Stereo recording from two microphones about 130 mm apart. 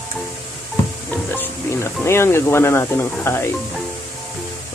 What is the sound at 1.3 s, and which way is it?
Speech, 15° left (ahead or behind).